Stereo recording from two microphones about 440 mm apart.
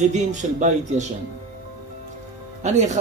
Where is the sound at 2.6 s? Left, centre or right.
Centre.